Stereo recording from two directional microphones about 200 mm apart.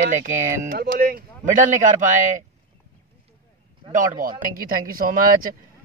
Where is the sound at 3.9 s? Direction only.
40° right (ahead or behind).